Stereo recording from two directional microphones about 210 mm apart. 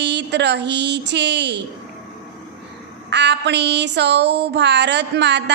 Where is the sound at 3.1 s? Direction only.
55° right (ahead or behind).